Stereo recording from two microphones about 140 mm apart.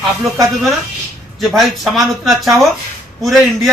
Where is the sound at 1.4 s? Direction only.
Centre (ahead or behind).